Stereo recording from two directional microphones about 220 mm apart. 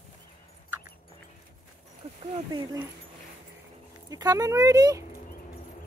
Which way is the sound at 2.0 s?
25° right (ahead or behind).